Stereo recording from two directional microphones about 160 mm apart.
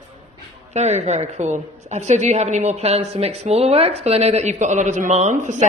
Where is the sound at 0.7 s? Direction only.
45° right (ahead or behind).